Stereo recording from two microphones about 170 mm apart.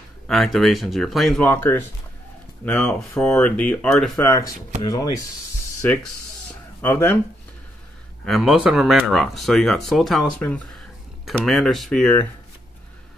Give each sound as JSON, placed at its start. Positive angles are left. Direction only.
{"t": 0.3, "sound": "speech", "side_deg": 0}
{"t": 1.5, "sound": "speech", "side_deg": 10}
{"t": 4.2, "sound": "speech", "side_deg": 15}
{"t": 5.8, "sound": "speech", "side_deg": 10}
{"t": 8.3, "sound": "speech", "side_deg": 0}